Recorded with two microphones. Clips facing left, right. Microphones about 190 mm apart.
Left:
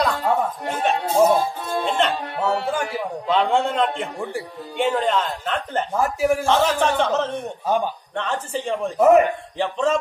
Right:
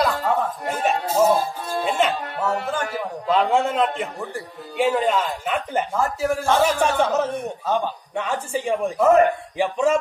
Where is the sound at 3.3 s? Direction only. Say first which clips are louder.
Right 1 dB; 5° right (ahead or behind).